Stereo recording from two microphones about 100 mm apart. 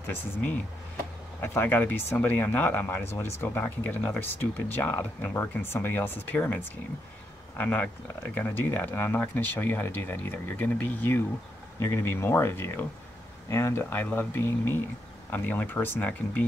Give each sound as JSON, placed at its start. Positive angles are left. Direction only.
{"t": 0.0, "sound": "speech", "side_deg": 20}